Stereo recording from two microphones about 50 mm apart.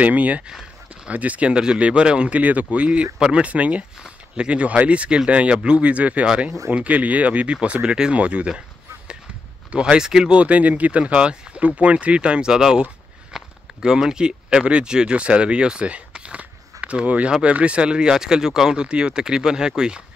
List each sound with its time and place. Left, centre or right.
0.0 s speech: right
0.5 s a sound: centre
1.1 s speech: right
3.4 s speech: right
10.4 s speech: right; by 12.8 s centre
13.3 s a sound: centre
13.7 s speech: centre